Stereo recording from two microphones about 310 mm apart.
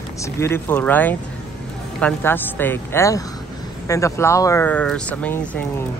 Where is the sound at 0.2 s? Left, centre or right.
Centre.